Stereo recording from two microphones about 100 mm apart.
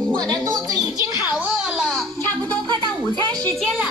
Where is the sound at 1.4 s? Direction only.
10° right (ahead or behind).